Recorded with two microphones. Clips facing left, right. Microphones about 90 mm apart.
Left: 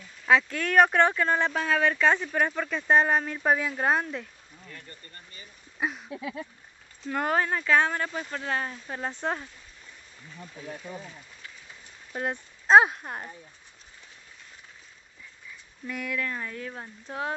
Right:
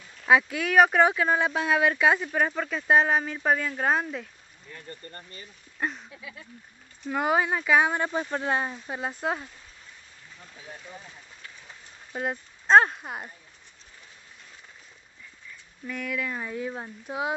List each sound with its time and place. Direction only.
0.3 s speech: 10° right (ahead or behind)
4.8 s speech: 40° right (ahead or behind)
5.8 s a sound: 5° left (ahead or behind)
7.1 s speech: 5° right (ahead or behind)
8.0 s speech: 25° right (ahead or behind); by 9.5 s 5° right (ahead or behind)
12.1 s speech: centre (ahead or behind)
13.0 s speech: 5° right (ahead or behind)
15.9 s speech: centre (ahead or behind)